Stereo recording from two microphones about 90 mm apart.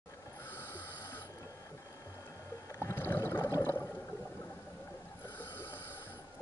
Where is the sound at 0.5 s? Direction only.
25° left (ahead or behind).